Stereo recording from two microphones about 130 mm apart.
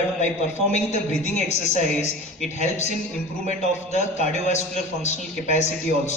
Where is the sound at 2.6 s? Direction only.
65° left (ahead or behind).